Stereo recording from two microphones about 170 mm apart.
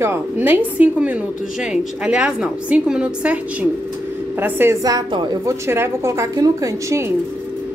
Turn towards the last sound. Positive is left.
turn(degrees=-20)  # may be behind; listen again after turning